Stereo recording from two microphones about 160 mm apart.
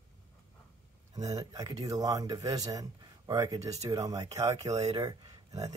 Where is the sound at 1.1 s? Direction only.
25° right (ahead or behind).